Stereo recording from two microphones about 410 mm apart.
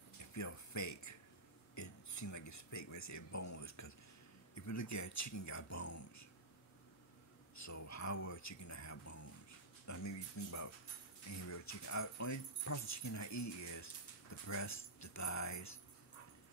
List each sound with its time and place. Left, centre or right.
0.2 s a sound: left
4.6 s speech: left
7.5 s speech: left